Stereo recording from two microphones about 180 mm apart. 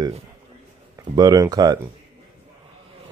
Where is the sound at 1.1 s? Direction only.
20° right (ahead or behind).